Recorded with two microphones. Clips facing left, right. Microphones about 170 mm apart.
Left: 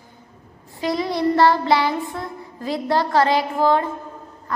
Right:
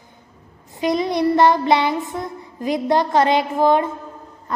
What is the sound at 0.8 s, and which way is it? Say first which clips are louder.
Child singing: right 2 dB; 20° right (ahead or behind).